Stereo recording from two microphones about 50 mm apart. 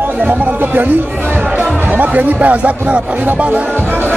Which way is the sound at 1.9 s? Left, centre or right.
Right.